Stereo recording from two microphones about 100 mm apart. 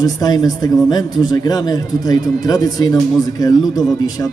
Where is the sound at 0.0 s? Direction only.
40° left (ahead or behind).